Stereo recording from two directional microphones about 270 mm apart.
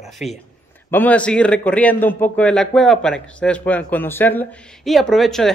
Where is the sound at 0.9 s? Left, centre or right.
Centre.